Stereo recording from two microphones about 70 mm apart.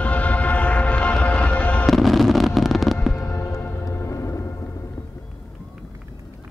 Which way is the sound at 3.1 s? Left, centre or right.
Left.